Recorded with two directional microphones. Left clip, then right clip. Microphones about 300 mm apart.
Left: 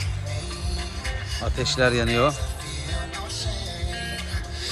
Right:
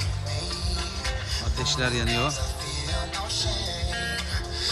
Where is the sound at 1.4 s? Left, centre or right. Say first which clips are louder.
Left 6 dB; centre.